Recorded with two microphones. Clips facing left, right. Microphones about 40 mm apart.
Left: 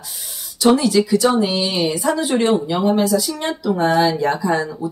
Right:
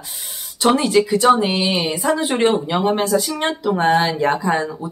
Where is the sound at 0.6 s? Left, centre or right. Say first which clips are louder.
Left 1 dB; right.